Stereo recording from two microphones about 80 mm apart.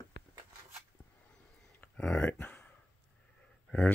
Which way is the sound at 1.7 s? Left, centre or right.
Centre.